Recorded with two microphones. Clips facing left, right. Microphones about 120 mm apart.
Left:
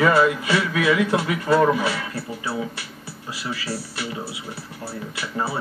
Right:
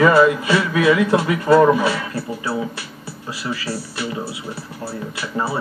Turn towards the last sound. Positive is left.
turn(degrees=-30)  # may be behind; listen again after turning